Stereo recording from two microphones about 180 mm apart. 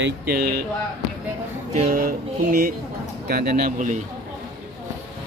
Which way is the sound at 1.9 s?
55° right (ahead or behind).